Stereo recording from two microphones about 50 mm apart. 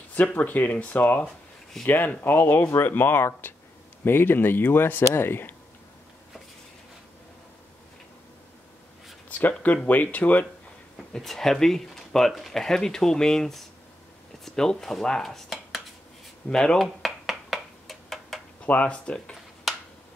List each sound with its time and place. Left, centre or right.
0.1 s speech: left
5.0 s speech: left
9.3 s speech: left
11.1 s speech: centre
16.4 s speech: centre
16.8 s a sound: centre
18.6 s speech: left